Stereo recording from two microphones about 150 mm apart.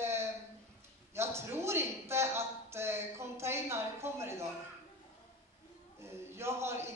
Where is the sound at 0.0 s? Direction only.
15° right (ahead or behind).